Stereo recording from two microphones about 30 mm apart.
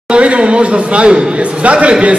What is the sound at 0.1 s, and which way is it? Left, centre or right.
A man's voice, right.